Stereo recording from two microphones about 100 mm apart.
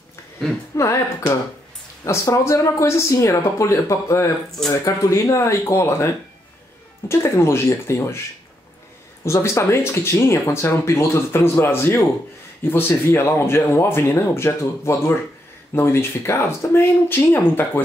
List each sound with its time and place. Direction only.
0.7 s speech: 30° left (ahead or behind)
2.0 s speech: 30° left (ahead or behind)
9.2 s speech: 30° left (ahead or behind)